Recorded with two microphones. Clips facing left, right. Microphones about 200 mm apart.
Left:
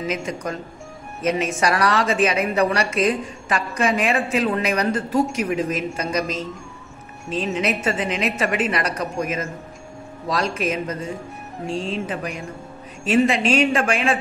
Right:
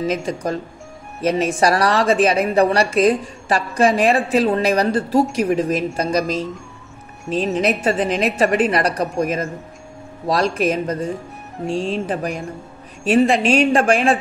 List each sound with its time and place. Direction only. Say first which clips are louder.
0.0 s a woman's voice: right 4 dB; 30° right (ahead or behind)
7.2 s a woman's voice: right 4 dB; centre (ahead or behind)
7.5 s a woman's voice: right 4 dB; 35° right (ahead or behind)